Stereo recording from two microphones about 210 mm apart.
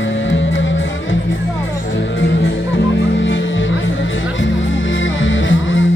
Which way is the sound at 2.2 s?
60° left (ahead or behind).